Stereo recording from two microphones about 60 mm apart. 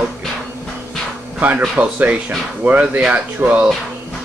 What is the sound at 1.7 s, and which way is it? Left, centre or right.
Speech, right.